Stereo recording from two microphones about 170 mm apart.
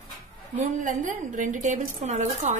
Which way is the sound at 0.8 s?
50° right (ahead or behind).